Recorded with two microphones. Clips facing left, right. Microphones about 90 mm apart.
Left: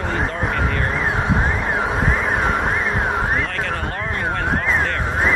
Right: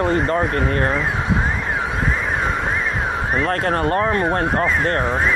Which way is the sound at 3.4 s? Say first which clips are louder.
Right 6 dB; 45° right (ahead or behind).